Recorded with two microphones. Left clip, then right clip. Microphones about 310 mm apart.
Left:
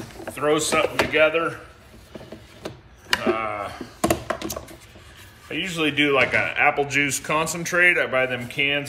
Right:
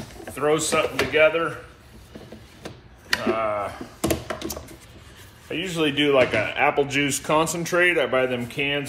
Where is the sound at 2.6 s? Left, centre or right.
Centre.